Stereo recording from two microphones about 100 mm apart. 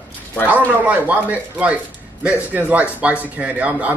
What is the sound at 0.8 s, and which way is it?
A man's voice, 15° right (ahead or behind).